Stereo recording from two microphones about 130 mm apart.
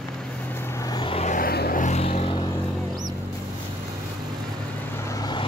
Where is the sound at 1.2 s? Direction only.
85° left; by 2.4 s 50° left (ahead or behind).